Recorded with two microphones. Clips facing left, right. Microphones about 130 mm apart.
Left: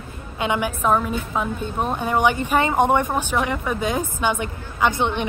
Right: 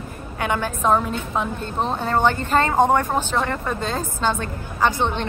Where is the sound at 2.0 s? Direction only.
15° left (ahead or behind).